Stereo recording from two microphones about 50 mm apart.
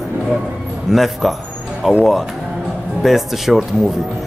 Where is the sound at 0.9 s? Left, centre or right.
Centre.